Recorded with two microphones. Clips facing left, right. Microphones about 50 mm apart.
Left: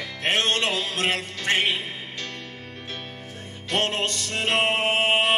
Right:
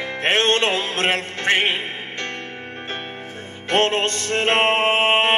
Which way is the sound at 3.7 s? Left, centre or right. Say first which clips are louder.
Right 6 dB; right.